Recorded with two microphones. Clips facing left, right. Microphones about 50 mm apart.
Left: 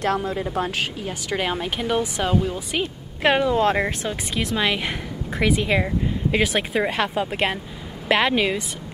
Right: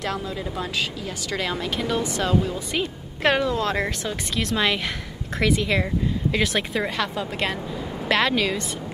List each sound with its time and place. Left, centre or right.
0.0 s speech: left
1.0 s a woman's voice: left
2.7 s speech: centre
6.9 s a woman's voice: left